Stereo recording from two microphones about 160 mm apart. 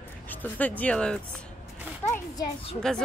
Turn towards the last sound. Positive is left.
turn(degrees=5)  # may be behind; listen again after turning